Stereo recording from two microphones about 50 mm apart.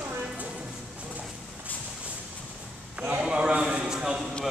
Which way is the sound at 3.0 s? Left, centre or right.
Right.